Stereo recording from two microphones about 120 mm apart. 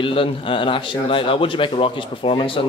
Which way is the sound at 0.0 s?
50° left (ahead or behind).